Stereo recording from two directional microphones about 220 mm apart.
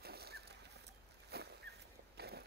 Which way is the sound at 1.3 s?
50° right (ahead or behind).